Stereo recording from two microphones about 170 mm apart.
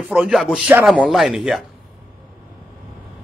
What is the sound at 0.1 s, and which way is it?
Speech, centre (ahead or behind).